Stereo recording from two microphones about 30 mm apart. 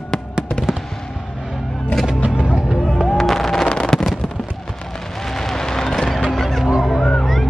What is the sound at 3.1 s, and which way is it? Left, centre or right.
Music, centre.